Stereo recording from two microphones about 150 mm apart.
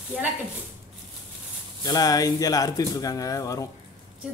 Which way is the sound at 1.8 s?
25° left (ahead or behind).